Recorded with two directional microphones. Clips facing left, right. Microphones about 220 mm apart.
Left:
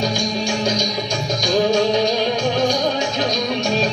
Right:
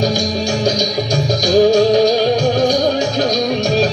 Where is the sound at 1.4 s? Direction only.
40° right (ahead or behind).